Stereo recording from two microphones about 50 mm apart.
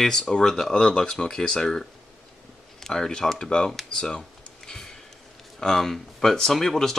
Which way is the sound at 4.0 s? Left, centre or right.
Centre.